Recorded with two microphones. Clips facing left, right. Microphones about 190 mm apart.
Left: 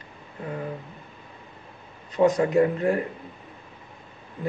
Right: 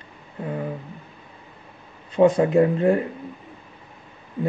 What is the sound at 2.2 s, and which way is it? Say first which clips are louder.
Speech: right 3 dB; 30° right (ahead or behind).